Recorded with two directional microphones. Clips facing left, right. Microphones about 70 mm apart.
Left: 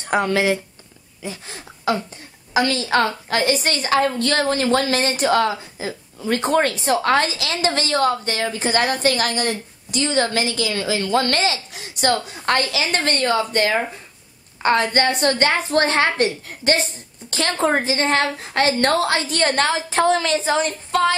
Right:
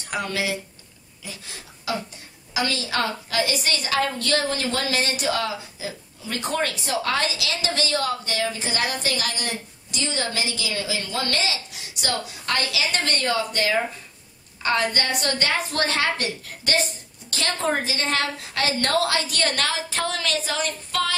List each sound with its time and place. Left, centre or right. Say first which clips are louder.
0.0 s a woman's voice: left 8 dB; left